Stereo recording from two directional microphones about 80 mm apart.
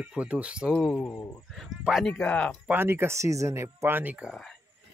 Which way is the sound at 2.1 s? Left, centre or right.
Centre.